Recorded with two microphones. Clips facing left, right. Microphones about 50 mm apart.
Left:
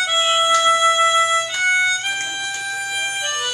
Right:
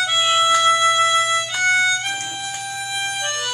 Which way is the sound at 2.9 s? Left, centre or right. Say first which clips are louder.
Left 1 dB; left.